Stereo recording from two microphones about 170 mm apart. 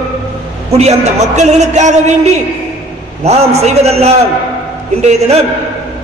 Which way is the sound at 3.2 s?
40° right (ahead or behind).